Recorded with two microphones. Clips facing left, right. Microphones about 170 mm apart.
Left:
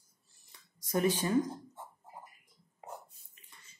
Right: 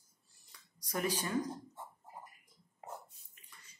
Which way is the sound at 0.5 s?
25° left (ahead or behind).